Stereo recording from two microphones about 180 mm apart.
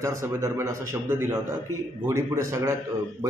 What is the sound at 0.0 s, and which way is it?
A man's voice, 15° right (ahead or behind).